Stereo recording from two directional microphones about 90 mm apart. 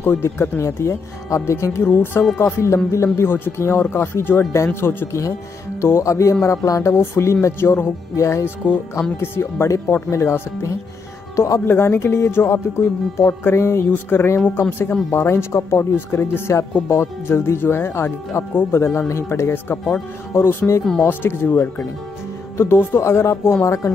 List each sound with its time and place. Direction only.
0.0 s speech: 25° left (ahead or behind)
11.6 s speech: 25° left (ahead or behind)